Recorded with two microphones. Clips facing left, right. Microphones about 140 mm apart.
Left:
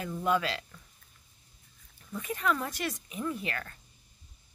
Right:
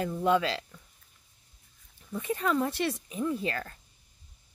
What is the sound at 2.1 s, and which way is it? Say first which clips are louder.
Speech: right 3 dB; 30° right (ahead or behind).